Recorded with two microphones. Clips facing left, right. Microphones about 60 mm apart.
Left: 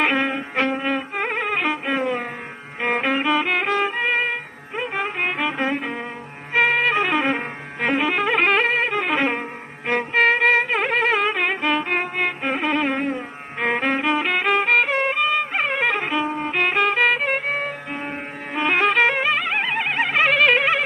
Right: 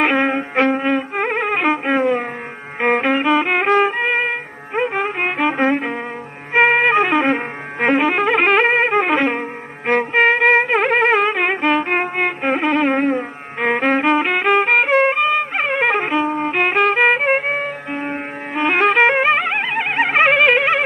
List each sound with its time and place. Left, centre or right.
0.0 s music: centre
0.8 s music: centre
3.9 s violin: centre
4.9 s music: centre
5.5 s music: right
7.1 s music: centre
8.6 s music: right
9.1 s music: centre
10.5 s wind instrument: centre
11.3 s music: centre
11.8 s violin: right
12.9 s music: right
13.6 s music: centre
19.0 s music: right